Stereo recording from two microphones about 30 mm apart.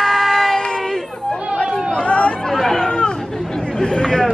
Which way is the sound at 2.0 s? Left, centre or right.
Left.